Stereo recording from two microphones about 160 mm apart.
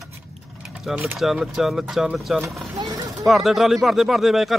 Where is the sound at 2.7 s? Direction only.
25° right (ahead or behind).